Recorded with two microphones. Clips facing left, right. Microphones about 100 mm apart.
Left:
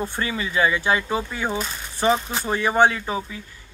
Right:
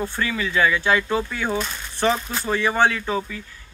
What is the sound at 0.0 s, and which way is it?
Speech, 20° left (ahead or behind).